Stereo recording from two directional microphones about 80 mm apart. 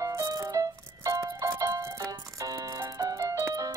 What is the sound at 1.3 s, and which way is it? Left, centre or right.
Music, right.